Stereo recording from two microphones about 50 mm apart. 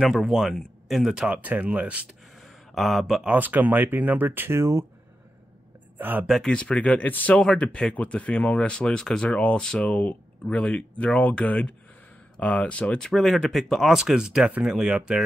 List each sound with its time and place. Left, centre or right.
0.1 s speech: centre
1.3 s speech: right
2.4 s a sound: centre
3.3 s speech: right
4.6 s speech: right
5.9 s speech: right
6.4 s speech: centre
7.0 s speech: left
7.5 s speech: left
9.3 s speech: left
9.9 s speech: left
13.0 s speech: centre